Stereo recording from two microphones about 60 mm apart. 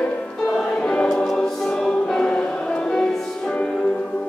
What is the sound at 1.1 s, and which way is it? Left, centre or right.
Choir, centre.